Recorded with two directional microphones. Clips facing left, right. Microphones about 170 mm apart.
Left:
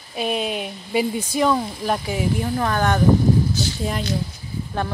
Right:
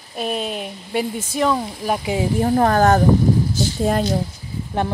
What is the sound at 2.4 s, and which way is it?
Speech, 45° right (ahead or behind).